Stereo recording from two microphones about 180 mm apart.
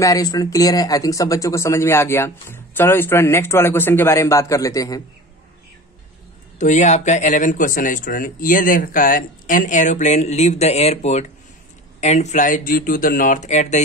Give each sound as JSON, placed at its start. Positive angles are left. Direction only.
{"t": 0.0, "sound": "a man's voice", "side_deg": 20}
{"t": 6.6, "sound": "speech", "side_deg": 40}